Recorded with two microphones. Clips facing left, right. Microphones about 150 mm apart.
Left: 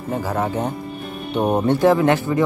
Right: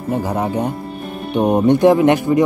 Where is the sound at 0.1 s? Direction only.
15° right (ahead or behind).